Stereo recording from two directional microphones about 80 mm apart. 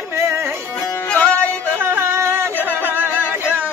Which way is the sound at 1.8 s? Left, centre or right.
Right.